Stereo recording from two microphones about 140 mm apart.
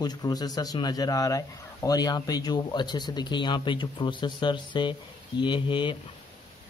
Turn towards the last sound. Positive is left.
turn(degrees=35)  # may be behind; listen again after turning